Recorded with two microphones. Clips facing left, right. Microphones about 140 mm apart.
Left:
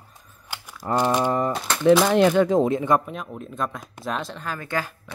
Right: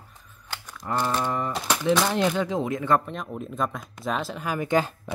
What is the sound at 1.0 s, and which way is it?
Speech, 15° left (ahead or behind).